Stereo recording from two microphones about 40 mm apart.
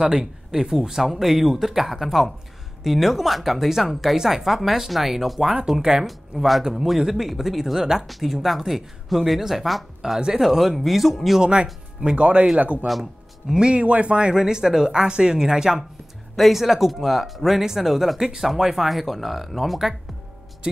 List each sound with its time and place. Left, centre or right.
0.0 s speech: centre
6.0 s speech: centre
12.2 s speech: right
12.8 s speech: centre
13.5 s speech: right
13.8 s speech: right
14.4 s speech: centre
16.3 s speech: centre